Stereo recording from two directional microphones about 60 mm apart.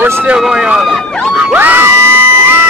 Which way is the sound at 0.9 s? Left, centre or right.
Centre.